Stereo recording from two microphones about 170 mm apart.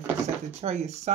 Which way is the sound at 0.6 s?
40° right (ahead or behind).